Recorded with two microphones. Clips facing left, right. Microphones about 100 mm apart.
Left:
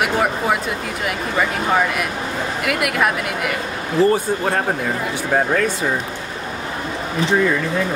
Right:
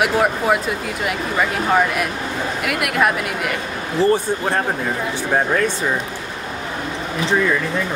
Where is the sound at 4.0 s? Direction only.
30° right (ahead or behind).